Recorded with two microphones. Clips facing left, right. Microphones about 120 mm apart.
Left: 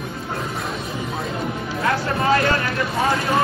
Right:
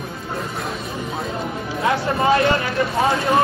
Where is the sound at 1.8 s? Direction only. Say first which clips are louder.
Right 2 dB; 25° right (ahead or behind).